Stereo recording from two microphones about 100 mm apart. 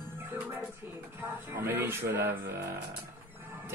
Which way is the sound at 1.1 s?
25° right (ahead or behind).